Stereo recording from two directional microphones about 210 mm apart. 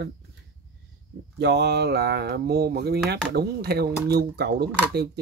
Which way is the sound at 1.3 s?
55° right (ahead or behind).